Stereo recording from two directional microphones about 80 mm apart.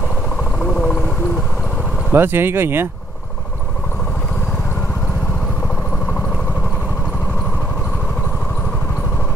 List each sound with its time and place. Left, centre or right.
0.6 s vehicle: centre
2.1 s speech: right